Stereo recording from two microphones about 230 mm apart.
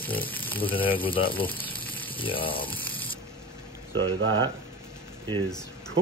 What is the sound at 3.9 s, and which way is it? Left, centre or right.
Speech, right.